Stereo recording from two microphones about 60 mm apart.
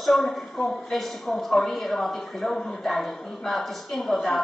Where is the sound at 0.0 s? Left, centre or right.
Centre.